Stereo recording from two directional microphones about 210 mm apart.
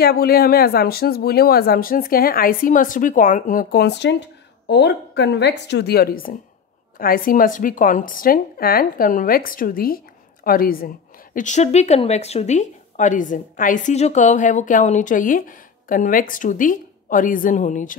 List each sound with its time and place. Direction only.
0.0 s speech: 45° left (ahead or behind)